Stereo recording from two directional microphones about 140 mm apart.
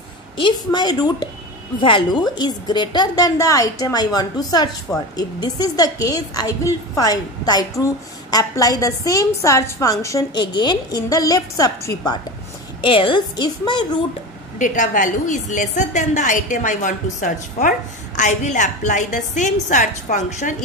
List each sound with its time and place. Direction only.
0.4 s a woman's voice: 30° left (ahead or behind)
12.8 s a woman's voice: 35° left (ahead or behind)
14.6 s a woman's voice: 65° left (ahead or behind)